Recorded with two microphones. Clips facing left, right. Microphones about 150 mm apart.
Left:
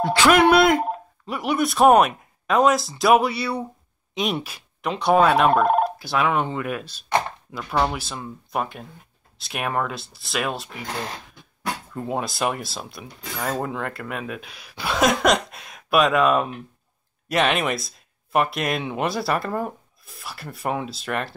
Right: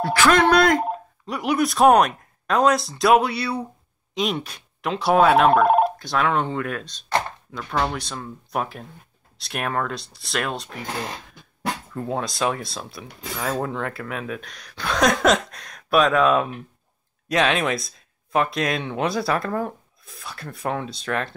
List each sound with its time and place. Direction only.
0.0 s speech: 20° left (ahead or behind)
0.3 s speech: 10° left (ahead or behind)
5.6 s telephone bell ringing: 5° right (ahead or behind)
5.9 s chopping: 5° left (ahead or behind)
7.8 s speech: 5° left (ahead or behind)
11.9 s speech: 5° left (ahead or behind)